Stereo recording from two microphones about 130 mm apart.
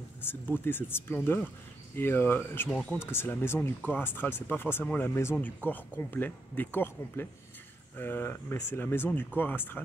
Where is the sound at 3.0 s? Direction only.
20° left (ahead or behind).